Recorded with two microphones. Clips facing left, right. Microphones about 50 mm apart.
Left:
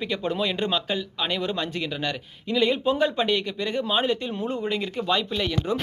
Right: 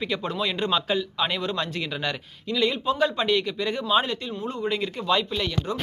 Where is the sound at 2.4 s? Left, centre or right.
Centre.